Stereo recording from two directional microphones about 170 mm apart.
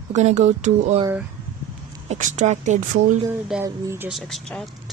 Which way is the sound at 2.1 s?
45° right (ahead or behind).